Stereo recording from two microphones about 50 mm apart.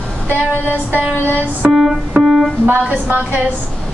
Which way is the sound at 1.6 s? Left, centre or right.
Right.